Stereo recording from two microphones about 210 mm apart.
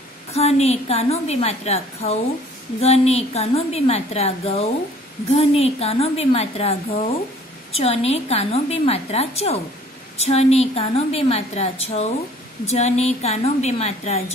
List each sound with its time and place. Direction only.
0.3 s a woman's voice: 30° left (ahead or behind)